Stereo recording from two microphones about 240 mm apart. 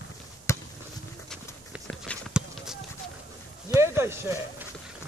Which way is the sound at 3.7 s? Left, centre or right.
Centre.